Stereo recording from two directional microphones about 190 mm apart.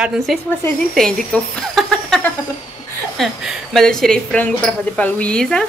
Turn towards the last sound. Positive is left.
turn(degrees=5)  # may be behind; listen again after turning